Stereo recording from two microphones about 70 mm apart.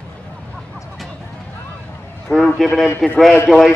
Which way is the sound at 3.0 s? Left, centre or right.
Centre.